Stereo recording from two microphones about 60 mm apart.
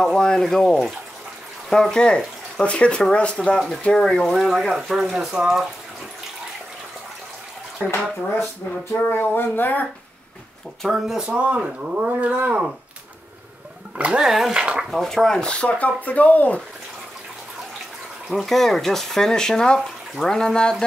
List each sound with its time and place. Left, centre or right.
0.0 s speech: centre
3.5 s speech: centre
3.8 s speech: centre
4.3 s speech: centre
7.8 s speech: centre
8.9 s speech: left
10.9 s speech: centre
11.4 s speech: right
13.9 s speech: right
14.2 s speech: centre
14.9 s speech: centre; by 16.6 s left
18.3 s speech: centre